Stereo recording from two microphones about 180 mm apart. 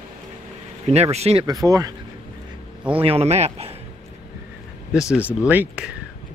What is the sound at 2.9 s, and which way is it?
Speech, 35° right (ahead or behind).